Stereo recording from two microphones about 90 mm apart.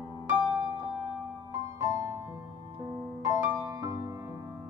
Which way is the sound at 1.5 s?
35° right (ahead or behind).